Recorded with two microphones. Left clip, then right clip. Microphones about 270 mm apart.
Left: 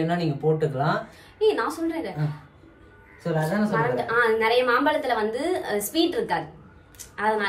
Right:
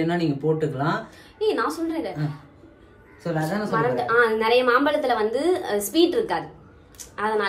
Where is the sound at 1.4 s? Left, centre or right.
Centre.